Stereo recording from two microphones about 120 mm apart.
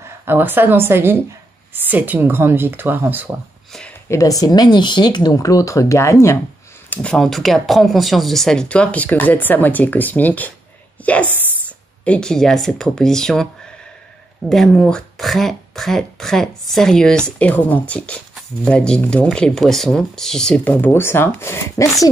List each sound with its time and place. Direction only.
0.0 s a woman's voice: 20° right (ahead or behind)
4.1 s speech: 30° left (ahead or behind)
6.9 s speech: 10° left (ahead or behind)
11.0 s a sound: 10° left (ahead or behind)
12.0 s speech: 10° left (ahead or behind)